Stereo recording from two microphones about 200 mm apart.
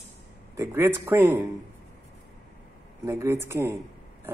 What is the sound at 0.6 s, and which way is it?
Speech, 10° right (ahead or behind).